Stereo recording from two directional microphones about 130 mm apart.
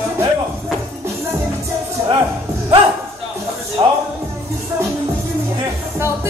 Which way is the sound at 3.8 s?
35° right (ahead or behind).